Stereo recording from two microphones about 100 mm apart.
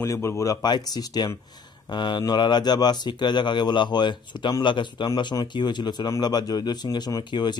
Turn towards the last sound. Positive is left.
turn(degrees=45)  # may be behind; listen again after turning